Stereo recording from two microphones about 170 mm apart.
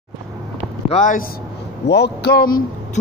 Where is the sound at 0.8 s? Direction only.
45° left (ahead or behind).